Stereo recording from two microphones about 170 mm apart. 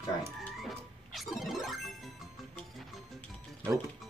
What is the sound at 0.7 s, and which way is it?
Music, centre (ahead or behind).